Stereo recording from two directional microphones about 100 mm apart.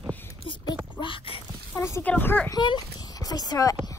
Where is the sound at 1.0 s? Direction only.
60° left (ahead or behind).